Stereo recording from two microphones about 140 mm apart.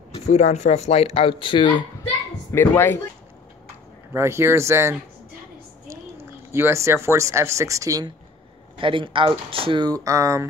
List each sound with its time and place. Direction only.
0.1 s speech: 55° left (ahead or behind); by 1.8 s 35° left (ahead or behind)
2.5 s speech: 15° left (ahead or behind)
4.1 s speech: 20° right (ahead or behind)
8.7 s speech: 35° right (ahead or behind)
10.0 s speech: 25° right (ahead or behind)